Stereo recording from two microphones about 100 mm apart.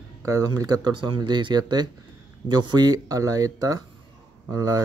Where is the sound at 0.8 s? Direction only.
50° right (ahead or behind).